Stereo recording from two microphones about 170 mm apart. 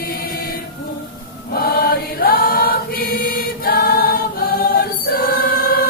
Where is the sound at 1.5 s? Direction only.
60° left (ahead or behind).